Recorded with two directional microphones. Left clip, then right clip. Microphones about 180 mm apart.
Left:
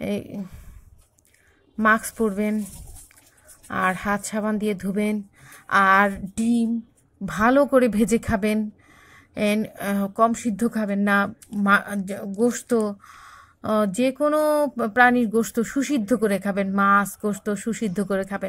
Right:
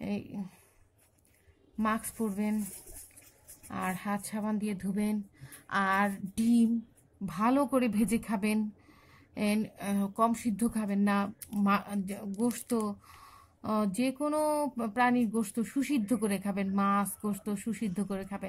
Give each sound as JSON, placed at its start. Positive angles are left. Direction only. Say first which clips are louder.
{"t": 0.0, "sound": "speech", "louder": "left 10 dB", "side_deg": 15}
{"t": 1.8, "sound": "speech", "louder": "left 13 dB", "side_deg": 20}
{"t": 3.6, "sound": "speech", "louder": "left 13 dB", "side_deg": 20}
{"t": 13.9, "sound": "speech", "louder": "left 10 dB", "side_deg": 15}